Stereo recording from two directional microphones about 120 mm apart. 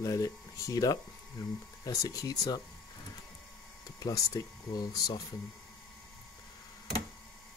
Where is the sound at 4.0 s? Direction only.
30° left (ahead or behind).